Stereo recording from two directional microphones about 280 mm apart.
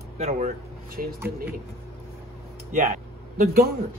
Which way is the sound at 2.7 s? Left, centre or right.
Right.